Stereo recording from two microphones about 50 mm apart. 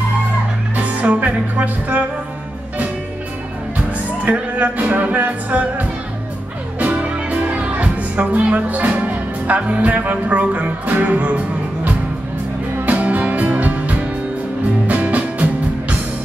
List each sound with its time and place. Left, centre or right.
0.7 s music: right
4.2 s music: right